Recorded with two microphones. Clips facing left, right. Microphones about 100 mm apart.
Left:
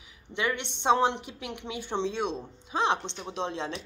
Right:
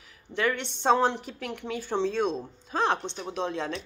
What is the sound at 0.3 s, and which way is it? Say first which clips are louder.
Speech: right 2 dB; 20° left (ahead or behind).